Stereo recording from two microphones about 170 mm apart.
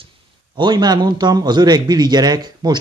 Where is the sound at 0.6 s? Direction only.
25° right (ahead or behind).